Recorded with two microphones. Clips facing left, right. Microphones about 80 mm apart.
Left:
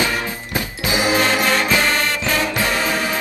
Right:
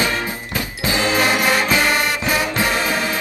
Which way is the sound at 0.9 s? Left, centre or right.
Centre.